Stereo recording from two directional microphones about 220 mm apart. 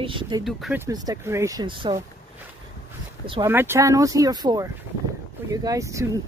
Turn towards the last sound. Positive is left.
turn(degrees=-15)  # may be behind; listen again after turning